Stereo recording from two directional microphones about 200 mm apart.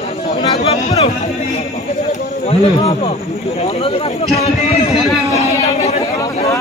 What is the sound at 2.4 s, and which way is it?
Speech, 30° left (ahead or behind).